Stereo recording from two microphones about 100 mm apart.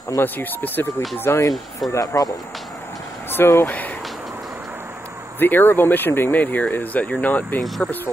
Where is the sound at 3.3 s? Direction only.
20° left (ahead or behind).